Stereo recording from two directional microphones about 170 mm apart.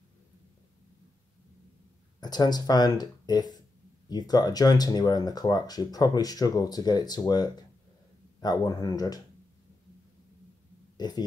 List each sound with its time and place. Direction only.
2.1 s speech: 25° left (ahead or behind)
11.0 s speech: 25° left (ahead or behind)